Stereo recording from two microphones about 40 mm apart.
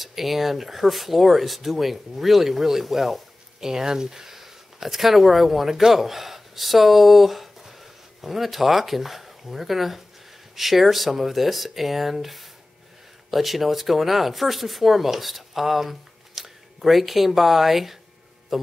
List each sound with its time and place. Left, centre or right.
0.0 s speech: centre